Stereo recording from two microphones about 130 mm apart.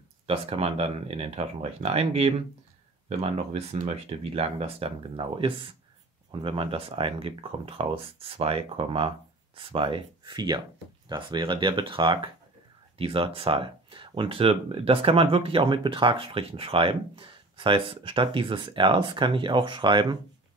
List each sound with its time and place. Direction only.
0.3 s speech: 50° right (ahead or behind)